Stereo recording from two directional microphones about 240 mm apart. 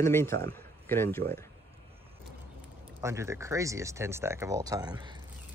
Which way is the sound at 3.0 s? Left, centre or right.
Centre.